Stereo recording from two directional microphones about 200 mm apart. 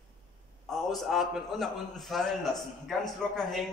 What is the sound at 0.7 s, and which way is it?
A man's voice, centre (ahead or behind).